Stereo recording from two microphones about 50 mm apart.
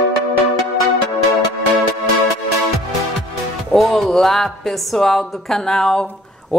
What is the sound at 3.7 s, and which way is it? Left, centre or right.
A woman's voice, centre.